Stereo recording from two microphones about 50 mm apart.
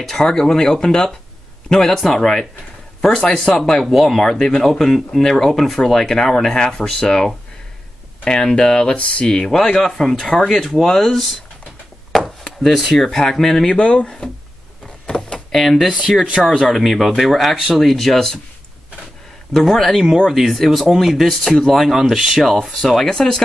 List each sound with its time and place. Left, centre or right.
0.0 s speech: centre
3.8 s speech: centre
8.3 s speech: centre
12.1 s chop: centre
12.6 s speech: centre
13.7 s speech: left
15.0 s a sound: centre
15.5 s speech: centre
19.5 s speech: centre